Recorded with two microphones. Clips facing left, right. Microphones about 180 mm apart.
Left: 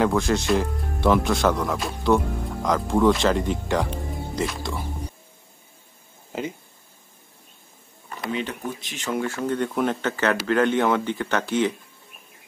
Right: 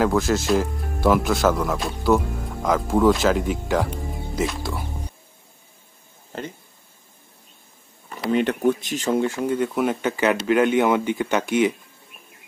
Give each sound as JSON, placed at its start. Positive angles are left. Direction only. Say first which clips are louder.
{"t": 0.0, "sound": "speech", "louder": "right 1 dB", "side_deg": 0}
{"t": 6.3, "sound": "speech", "louder": "left 3 dB", "side_deg": 5}
{"t": 8.3, "sound": "speech", "louder": "right 8 dB", "side_deg": -55}
{"t": 8.9, "sound": "speech", "louder": "right 6 dB", "side_deg": -35}
{"t": 9.2, "sound": "speech", "louder": "right 3 dB", "side_deg": -15}